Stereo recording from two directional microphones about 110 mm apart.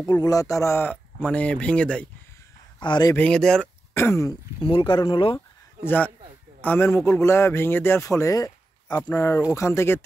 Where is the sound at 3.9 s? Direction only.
25° left (ahead or behind).